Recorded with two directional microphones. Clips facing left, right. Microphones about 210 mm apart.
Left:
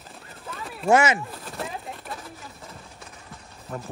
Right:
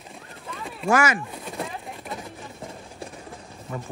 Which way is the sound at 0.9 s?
25° left (ahead or behind).